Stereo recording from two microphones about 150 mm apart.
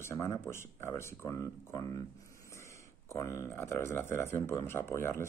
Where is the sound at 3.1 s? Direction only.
20° left (ahead or behind).